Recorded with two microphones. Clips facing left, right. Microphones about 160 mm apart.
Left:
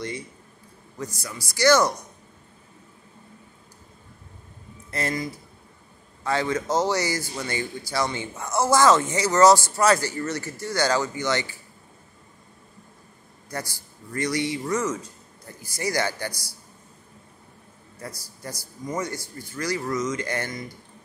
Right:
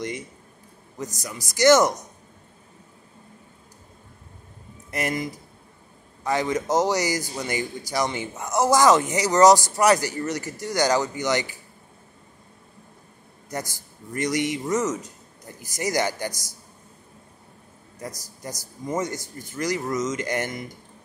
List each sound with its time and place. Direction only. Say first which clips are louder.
0.9 s a man's voice: right 1 dB; 20° right (ahead or behind)
4.9 s a man's voice: right 1 dB; 15° right (ahead or behind)
13.5 s a man's voice: right 2 dB; 20° right (ahead or behind)
17.9 s a man's voice: right 2 dB; 15° right (ahead or behind)